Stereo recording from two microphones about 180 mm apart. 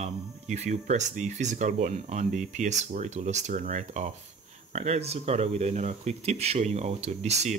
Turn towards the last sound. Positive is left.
turn(degrees=-40)  # may be behind; listen again after turning